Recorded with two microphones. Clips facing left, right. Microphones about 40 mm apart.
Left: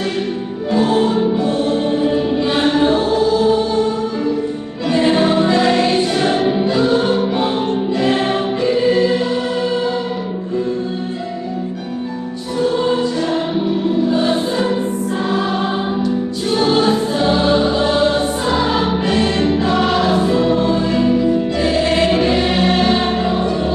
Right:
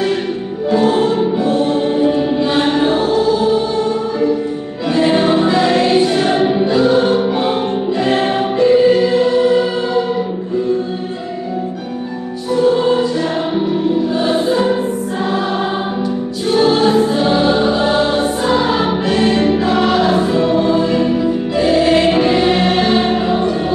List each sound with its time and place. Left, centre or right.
0.7 s music: centre
8.0 s choir: centre
12.5 s music: centre
16.4 s choir: centre